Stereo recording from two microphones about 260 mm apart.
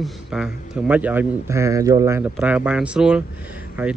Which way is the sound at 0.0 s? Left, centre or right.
Centre.